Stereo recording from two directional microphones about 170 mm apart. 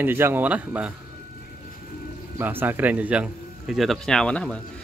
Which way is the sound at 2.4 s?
10° right (ahead or behind).